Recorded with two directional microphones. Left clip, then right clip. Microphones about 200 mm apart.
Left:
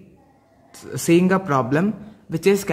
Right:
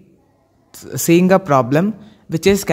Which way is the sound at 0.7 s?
35° right (ahead or behind).